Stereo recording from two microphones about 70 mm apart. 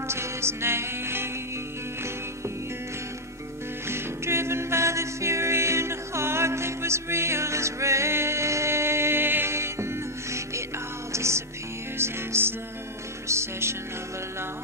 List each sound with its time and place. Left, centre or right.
0.1 s music: right
3.8 s music: right